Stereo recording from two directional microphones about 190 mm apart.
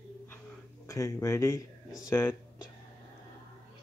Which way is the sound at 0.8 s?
15° left (ahead or behind).